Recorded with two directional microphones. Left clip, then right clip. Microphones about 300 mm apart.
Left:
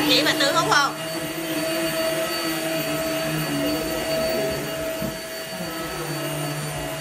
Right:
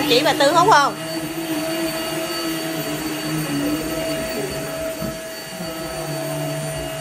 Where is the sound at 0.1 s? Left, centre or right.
Centre.